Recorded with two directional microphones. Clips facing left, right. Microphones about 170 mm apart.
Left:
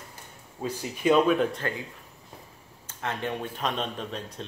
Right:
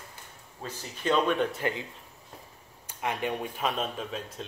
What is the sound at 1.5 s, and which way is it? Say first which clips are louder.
Speech: right 1 dB; 20° right (ahead or behind).